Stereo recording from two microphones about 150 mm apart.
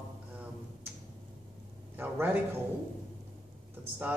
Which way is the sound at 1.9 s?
15° right (ahead or behind).